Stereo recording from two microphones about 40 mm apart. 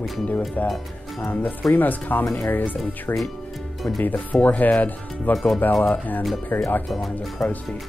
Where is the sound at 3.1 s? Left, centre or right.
Left.